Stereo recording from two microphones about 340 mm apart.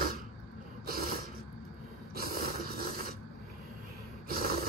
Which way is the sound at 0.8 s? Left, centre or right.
Right.